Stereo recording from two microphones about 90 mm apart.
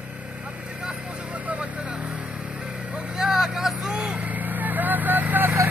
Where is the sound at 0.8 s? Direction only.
10° right (ahead or behind).